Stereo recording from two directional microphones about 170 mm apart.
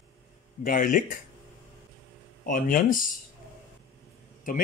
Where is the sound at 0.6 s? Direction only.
50° left (ahead or behind).